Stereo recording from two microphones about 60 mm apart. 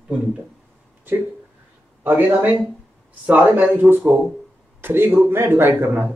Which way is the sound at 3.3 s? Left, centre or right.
Right.